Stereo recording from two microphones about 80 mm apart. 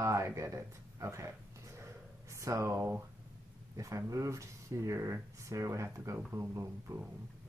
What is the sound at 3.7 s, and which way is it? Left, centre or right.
Speech, right.